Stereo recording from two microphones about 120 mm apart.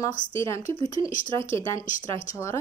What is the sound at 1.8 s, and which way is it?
Speech, 90° left.